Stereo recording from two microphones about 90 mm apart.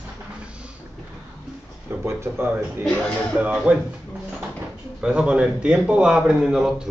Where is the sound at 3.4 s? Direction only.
15° right (ahead or behind).